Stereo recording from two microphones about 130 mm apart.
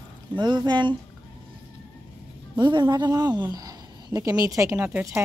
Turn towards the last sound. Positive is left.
turn(degrees=-15)  # may be behind; listen again after turning